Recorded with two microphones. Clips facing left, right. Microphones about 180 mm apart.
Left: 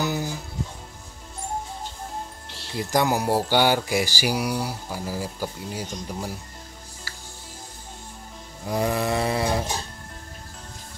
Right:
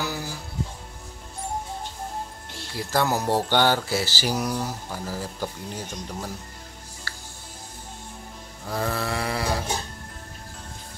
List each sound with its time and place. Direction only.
0.0 s music: 20° left (ahead or behind)
2.7 s speech: 15° left (ahead or behind)
8.6 s a sound: 15° left (ahead or behind)